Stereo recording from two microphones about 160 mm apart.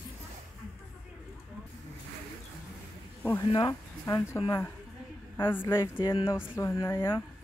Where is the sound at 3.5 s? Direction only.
30° left (ahead or behind).